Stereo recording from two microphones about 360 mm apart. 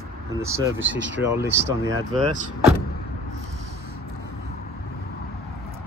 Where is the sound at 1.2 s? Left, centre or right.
Centre.